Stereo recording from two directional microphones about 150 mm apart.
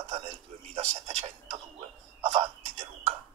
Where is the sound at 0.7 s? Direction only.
45° right (ahead or behind).